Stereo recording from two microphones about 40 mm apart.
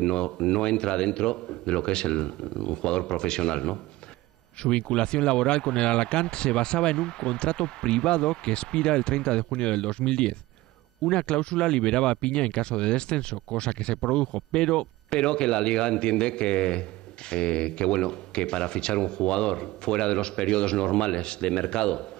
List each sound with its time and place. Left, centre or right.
0.0 s speech: left